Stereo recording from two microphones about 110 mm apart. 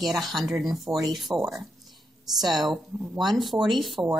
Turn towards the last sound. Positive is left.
turn(degrees=0)  # may be behind; listen again after turning